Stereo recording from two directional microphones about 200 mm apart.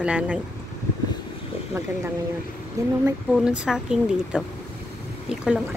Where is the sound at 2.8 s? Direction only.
15° right (ahead or behind).